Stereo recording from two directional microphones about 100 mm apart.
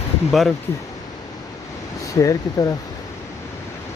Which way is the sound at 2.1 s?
35° left (ahead or behind).